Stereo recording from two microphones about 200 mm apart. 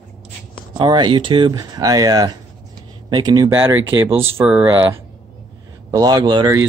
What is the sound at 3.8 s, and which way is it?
Speech, 70° right (ahead or behind).